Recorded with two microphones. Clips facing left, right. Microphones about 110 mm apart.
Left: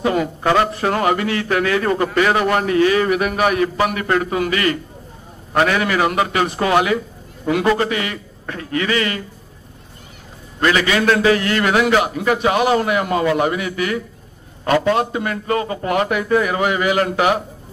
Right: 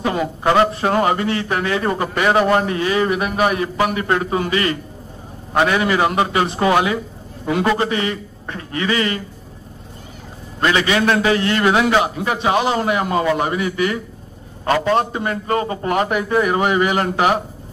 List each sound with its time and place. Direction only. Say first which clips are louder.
0.1 s a man's voice: even; 25° right (ahead or behind)
10.6 s a man's voice: even; 25° right (ahead or behind)